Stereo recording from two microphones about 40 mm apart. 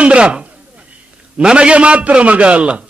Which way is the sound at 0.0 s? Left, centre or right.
Right.